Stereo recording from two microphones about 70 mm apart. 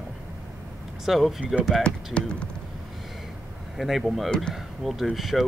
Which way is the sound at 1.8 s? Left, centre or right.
Centre.